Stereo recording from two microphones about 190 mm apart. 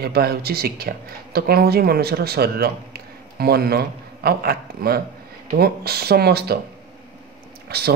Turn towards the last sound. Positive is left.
turn(degrees=-55)  # may be behind; listen again after turning